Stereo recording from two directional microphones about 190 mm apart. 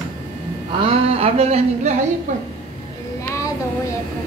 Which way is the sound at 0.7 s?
30° right (ahead or behind).